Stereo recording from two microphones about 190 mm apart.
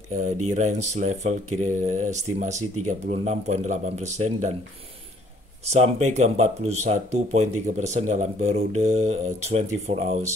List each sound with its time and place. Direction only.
0.1 s speech: 40° right (ahead or behind)
5.7 s speech: 35° right (ahead or behind)